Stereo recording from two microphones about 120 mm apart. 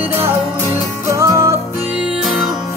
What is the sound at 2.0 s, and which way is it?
Music, 5° right (ahead or behind).